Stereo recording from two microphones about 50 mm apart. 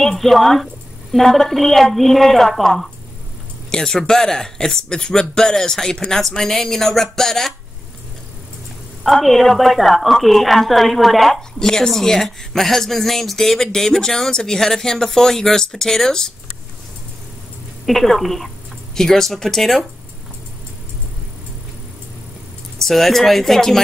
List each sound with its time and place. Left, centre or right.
0.0 s a woman's voice: centre
3.7 s speech: centre
9.0 s a woman's voice: centre
17.8 s a woman's voice: centre
22.8 s a woman's voice: centre